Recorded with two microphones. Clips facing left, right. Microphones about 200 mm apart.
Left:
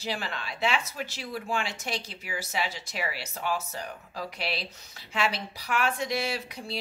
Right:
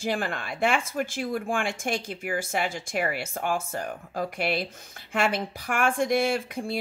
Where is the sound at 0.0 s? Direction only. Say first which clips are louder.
Right 5 dB; 50° right (ahead or behind).